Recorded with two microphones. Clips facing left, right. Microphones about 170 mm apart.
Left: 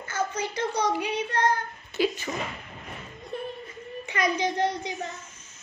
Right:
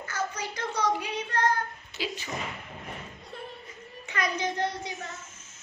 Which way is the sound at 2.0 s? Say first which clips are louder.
Left 9 dB; 50° left (ahead or behind).